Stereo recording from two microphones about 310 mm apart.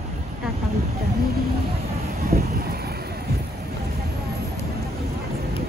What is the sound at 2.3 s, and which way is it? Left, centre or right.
Vehicle, right.